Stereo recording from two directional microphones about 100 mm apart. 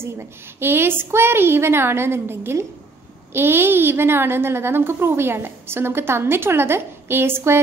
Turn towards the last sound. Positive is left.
turn(degrees=-25)  # may be behind; listen again after turning